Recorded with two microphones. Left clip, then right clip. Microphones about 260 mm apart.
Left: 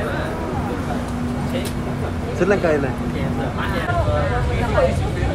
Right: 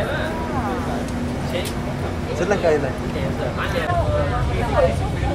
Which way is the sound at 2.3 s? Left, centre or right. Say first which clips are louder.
Left 3 dB; left.